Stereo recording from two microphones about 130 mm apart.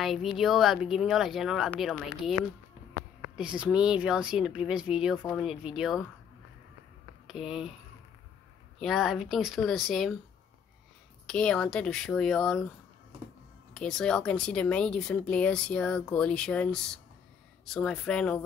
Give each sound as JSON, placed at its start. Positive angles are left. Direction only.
{"t": 0.0, "sound": "speech", "side_deg": 0}
{"t": 7.2, "sound": "speech", "side_deg": -5}
{"t": 8.7, "sound": "speech", "side_deg": 0}
{"t": 11.2, "sound": "speech", "side_deg": 5}
{"t": 13.7, "sound": "speech", "side_deg": 5}